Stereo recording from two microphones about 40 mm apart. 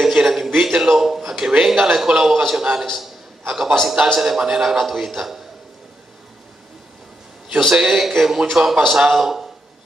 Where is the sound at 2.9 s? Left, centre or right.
Centre.